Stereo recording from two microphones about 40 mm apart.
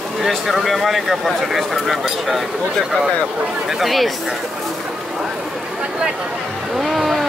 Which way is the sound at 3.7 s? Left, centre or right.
Centre.